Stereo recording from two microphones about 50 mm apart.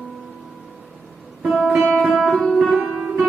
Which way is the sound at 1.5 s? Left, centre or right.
Right.